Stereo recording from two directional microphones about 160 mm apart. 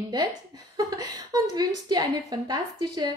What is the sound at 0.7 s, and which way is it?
A woman's voice, 25° right (ahead or behind).